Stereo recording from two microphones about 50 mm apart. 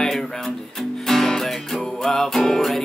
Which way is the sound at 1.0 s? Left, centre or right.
Centre.